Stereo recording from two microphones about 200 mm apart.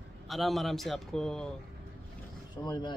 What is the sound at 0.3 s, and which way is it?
Speech, centre (ahead or behind).